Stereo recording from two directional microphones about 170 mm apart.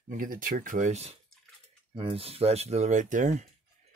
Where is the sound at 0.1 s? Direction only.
55° right (ahead or behind).